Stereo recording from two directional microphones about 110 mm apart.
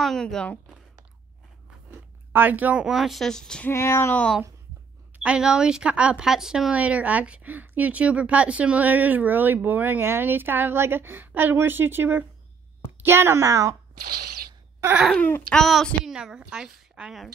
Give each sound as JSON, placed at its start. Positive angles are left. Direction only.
{"t": 0.0, "sound": "a woman's voice", "side_deg": 5}
{"t": 1.9, "sound": "speech", "side_deg": -15}
{"t": 3.6, "sound": "speech", "side_deg": 25}
{"t": 5.2, "sound": "a woman's voice", "side_deg": -10}
{"t": 14.8, "sound": "a sound", "side_deg": -15}
{"t": 15.1, "sound": "speech", "side_deg": 15}
{"t": 15.6, "sound": "a woman's voice", "side_deg": 0}